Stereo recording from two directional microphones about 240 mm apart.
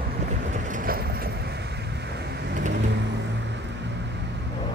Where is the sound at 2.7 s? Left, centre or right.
Right.